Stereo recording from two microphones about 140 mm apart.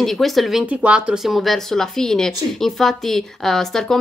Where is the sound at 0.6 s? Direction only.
10° right (ahead or behind).